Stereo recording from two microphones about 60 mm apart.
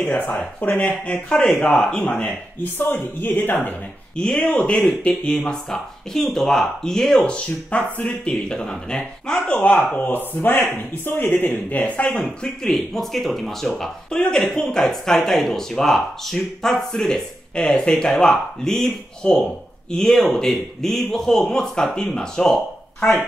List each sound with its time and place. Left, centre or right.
0.0 s speech: left
1.3 s speech: centre
2.6 s speech: left
4.4 s speech: left
9.5 s speech: left
12.2 s speech: centre
14.1 s speech: centre